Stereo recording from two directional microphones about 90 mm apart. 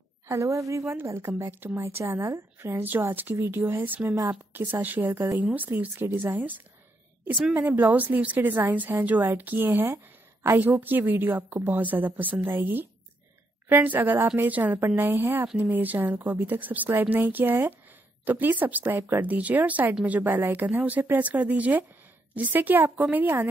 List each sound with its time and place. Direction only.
0.3 s a woman's voice: 35° right (ahead or behind); by 23.5 s 20° right (ahead or behind)